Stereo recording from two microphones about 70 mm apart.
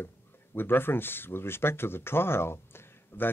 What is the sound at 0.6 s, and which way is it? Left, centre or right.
Speech, left.